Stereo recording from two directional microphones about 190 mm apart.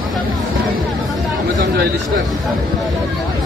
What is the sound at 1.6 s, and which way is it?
Chatter, 50° right (ahead or behind).